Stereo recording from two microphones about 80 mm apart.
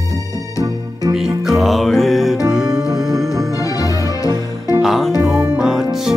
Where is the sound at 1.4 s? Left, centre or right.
Centre.